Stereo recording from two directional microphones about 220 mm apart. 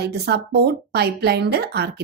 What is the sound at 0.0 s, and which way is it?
Speech, 50° right (ahead or behind).